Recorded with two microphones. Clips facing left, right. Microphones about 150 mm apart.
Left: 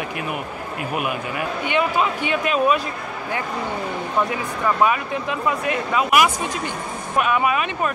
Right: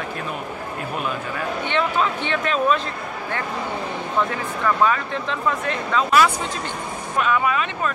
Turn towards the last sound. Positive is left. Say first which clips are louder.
# left 2 dB
turn(degrees=15)  # may be behind; listen again after turning